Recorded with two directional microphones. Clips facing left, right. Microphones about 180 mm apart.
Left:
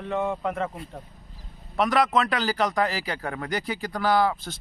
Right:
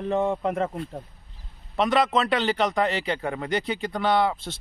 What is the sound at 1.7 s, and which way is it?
Speech, 25° right (ahead or behind).